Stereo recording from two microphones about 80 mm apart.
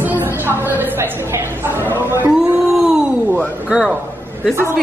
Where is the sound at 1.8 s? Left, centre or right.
Right.